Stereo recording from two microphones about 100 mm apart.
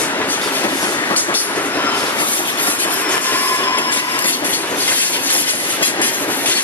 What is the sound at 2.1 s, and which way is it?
Train, 55° left (ahead or behind).